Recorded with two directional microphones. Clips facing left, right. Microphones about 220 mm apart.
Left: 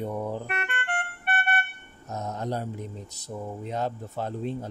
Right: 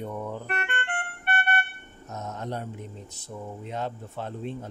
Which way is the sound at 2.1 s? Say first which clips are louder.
Left 3 dB; 35° left (ahead or behind).